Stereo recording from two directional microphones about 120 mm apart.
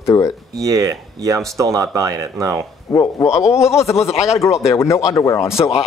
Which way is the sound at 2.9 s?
25° left (ahead or behind).